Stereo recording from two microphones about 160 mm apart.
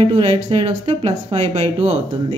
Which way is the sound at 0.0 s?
35° right (ahead or behind).